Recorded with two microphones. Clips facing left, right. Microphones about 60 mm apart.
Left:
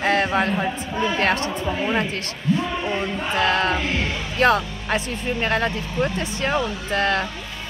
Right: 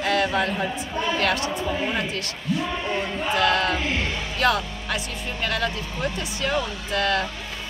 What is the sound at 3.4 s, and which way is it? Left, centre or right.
Speech, left.